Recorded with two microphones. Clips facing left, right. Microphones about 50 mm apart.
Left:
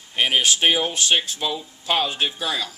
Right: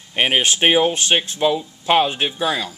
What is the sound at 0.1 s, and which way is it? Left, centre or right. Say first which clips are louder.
Speech: right 2 dB; right.